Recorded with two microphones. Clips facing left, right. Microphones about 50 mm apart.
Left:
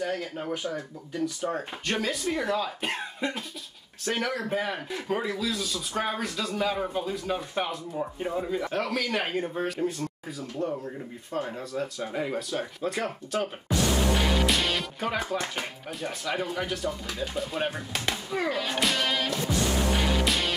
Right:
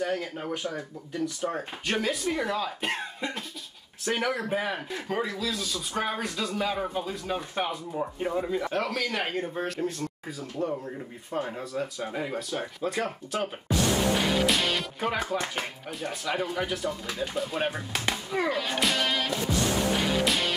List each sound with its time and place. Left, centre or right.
0.0 s speech: centre
4.0 s speech: centre
18.3 s music: centre